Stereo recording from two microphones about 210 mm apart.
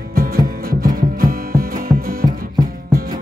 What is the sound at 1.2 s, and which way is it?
Music, 45° right (ahead or behind).